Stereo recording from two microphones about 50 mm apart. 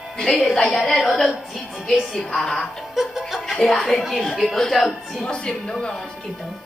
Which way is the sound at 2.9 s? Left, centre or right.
Centre.